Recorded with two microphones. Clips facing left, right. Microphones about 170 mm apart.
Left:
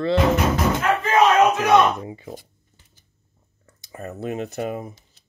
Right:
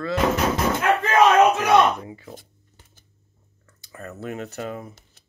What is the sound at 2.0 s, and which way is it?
Speech, 25° left (ahead or behind).